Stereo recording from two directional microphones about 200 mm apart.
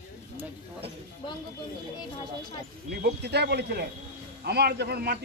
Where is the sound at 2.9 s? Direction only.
55° right (ahead or behind).